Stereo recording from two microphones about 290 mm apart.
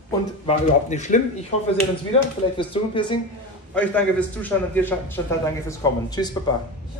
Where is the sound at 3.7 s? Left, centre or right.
Centre.